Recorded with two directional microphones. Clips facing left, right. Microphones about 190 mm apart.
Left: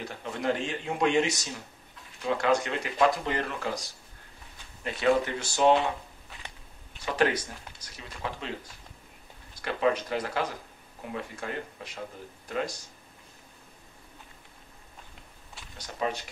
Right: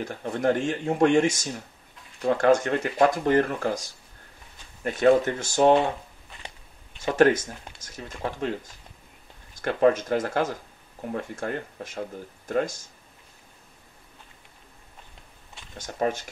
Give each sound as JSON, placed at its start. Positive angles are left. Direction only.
{"t": 0.0, "sound": "speech", "side_deg": -50}
{"t": 7.2, "sound": "speech", "side_deg": -50}
{"t": 9.6, "sound": "speech", "side_deg": -50}
{"t": 15.8, "sound": "speech", "side_deg": -50}